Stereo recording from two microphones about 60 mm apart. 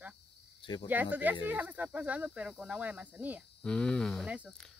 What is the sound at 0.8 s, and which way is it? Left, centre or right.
Speech, right.